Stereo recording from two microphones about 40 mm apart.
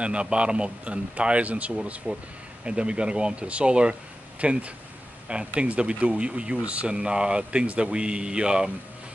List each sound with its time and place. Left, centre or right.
0.0 s a man's voice: right
7.0 s a man's voice: right